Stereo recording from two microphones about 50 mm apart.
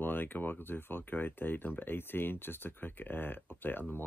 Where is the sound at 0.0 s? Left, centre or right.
Left.